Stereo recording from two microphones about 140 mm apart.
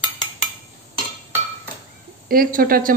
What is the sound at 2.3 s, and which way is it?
Speech, 90° right.